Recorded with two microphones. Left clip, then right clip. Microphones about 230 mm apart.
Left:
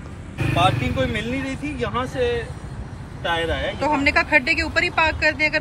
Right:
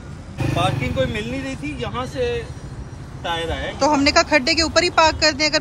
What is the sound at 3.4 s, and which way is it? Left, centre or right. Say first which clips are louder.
A man's voice: right 5 dB; right.